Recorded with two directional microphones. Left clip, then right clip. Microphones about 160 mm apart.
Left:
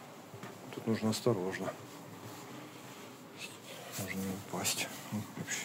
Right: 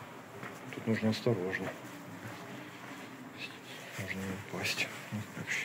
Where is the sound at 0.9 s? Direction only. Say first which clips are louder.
Even; 25° left (ahead or behind).